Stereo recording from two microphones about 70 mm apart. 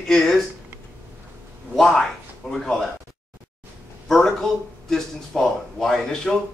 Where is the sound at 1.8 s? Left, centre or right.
Centre.